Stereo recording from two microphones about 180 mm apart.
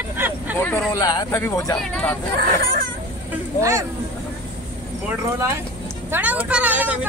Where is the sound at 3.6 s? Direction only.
15° right (ahead or behind).